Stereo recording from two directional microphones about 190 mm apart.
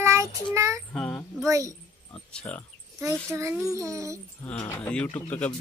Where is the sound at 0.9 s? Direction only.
5° left (ahead or behind).